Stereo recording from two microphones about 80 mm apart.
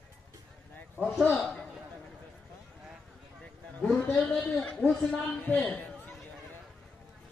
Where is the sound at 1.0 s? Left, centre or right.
Centre.